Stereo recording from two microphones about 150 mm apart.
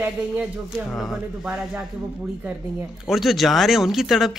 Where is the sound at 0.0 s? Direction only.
15° right (ahead or behind).